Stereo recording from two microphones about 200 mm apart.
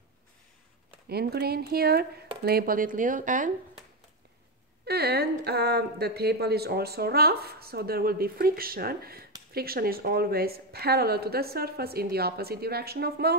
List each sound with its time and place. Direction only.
1.0 s a woman's voice: 50° right (ahead or behind)
4.8 s a woman's voice: 55° right (ahead or behind)